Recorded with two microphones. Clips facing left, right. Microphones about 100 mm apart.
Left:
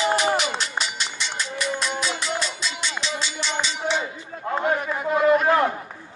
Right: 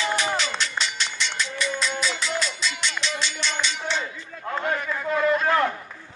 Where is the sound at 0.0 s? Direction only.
30° left (ahead or behind).